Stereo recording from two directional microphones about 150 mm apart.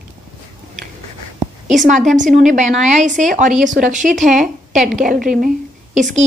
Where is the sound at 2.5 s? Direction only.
50° right (ahead or behind).